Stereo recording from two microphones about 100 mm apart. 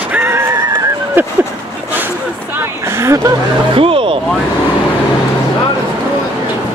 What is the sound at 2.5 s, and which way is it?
Speech, 25° right (ahead or behind).